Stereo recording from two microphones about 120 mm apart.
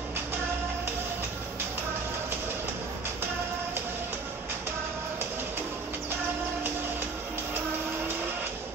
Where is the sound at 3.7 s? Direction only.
15° right (ahead or behind).